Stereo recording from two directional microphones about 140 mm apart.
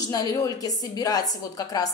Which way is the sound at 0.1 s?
25° left (ahead or behind).